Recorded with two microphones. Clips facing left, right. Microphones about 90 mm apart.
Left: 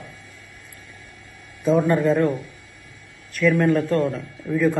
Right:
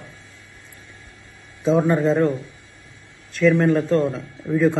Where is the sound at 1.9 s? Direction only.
Centre (ahead or behind).